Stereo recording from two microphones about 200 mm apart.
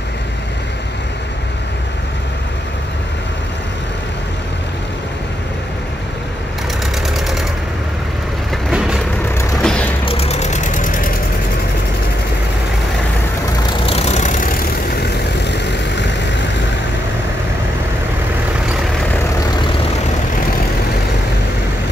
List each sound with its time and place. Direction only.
7.2 s a sound: centre (ahead or behind)
8.6 s vehicle: 5° right (ahead or behind)
10.0 s vehicle: 30° left (ahead or behind)
13.8 s vehicle: 30° left (ahead or behind)
15.5 s vehicle: 60° left (ahead or behind)